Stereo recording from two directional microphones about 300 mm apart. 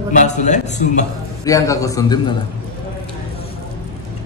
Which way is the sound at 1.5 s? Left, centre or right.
Centre.